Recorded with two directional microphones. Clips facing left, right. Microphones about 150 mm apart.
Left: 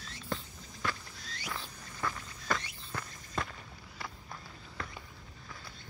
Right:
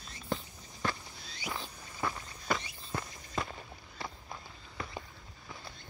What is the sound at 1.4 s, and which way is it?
Rodents, 20° right (ahead or behind).